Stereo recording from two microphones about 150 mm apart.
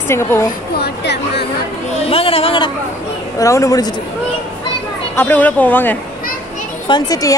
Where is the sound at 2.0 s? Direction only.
40° left (ahead or behind).